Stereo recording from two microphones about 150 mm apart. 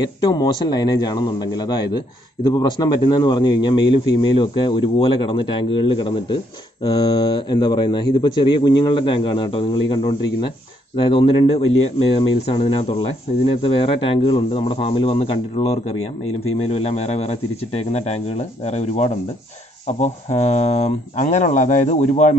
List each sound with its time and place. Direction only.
0.0 s a man's voice: 25° left (ahead or behind); by 22.3 s 55° left (ahead or behind)